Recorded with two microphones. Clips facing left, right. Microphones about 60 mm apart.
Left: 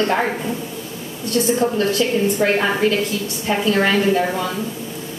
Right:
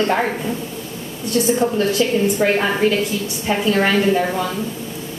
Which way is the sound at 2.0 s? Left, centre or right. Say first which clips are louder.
Right 1 dB; centre.